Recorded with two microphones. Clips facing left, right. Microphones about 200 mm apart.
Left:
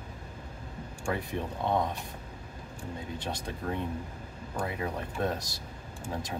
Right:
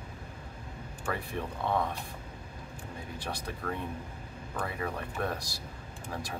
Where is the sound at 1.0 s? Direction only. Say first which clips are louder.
Left 2 dB; 20° left (ahead or behind).